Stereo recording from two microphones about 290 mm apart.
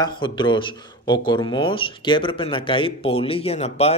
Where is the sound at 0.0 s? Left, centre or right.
Centre.